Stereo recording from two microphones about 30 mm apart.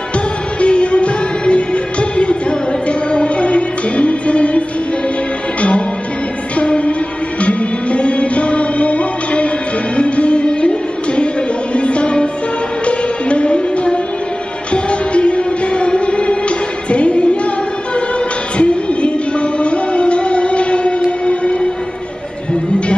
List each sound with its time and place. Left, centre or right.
0.6 s music: left
18.6 s music: left
21.3 s a sound: left